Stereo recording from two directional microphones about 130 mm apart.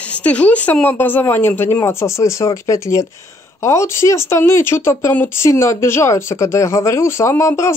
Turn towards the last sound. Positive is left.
turn(degrees=20)  # may be behind; listen again after turning